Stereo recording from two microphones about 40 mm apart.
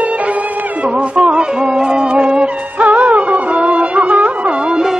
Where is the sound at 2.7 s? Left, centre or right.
Right.